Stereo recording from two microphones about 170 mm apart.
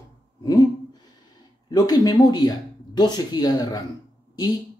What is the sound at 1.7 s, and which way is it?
Speech, 25° left (ahead or behind).